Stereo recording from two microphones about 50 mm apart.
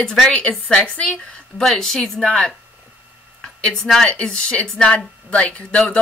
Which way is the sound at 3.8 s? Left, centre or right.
Centre.